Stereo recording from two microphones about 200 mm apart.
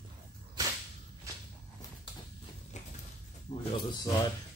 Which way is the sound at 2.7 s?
35° left (ahead or behind).